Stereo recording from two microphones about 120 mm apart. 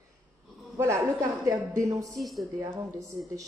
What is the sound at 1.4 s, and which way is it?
Speech, 30° right (ahead or behind).